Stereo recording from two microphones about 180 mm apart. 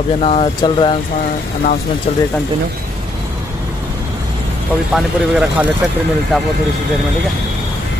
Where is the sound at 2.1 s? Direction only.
35° left (ahead or behind).